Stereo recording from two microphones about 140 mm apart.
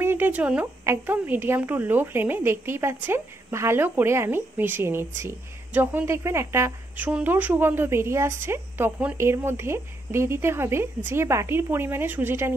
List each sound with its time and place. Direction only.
0.0 s speech: 15° right (ahead or behind)